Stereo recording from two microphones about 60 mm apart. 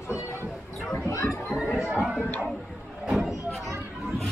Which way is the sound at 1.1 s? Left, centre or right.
Left.